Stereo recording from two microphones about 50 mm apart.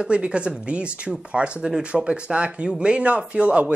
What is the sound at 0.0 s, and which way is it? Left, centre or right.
Speech, right.